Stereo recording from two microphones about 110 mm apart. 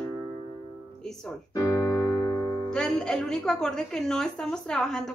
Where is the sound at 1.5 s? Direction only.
30° left (ahead or behind).